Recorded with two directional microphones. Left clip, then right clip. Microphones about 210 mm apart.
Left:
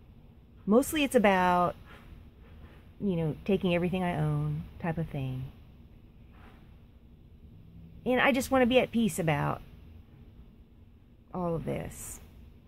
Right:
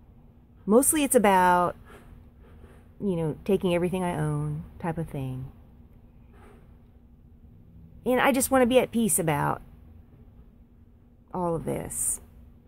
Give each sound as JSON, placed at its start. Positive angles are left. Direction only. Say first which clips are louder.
{"t": 0.9, "sound": "speech", "louder": "right 4 dB", "side_deg": -10}
{"t": 3.0, "sound": "a woman's voice", "louder": "right 4 dB", "side_deg": -5}
{"t": 8.0, "sound": "speech", "louder": "right 3 dB", "side_deg": -10}
{"t": 11.3, "sound": "speech", "louder": "right 4 dB", "side_deg": -10}